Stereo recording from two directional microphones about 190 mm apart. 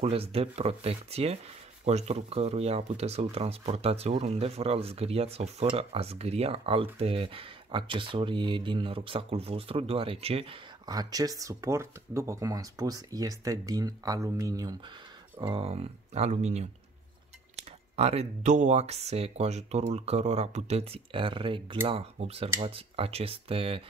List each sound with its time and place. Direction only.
0.0 s speech: 30° right (ahead or behind)